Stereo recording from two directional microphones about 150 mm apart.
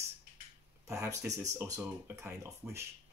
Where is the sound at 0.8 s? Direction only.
20° right (ahead or behind).